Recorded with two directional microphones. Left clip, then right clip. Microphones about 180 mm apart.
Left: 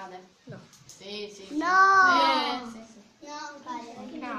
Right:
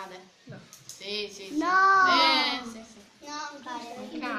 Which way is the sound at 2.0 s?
Centre (ahead or behind).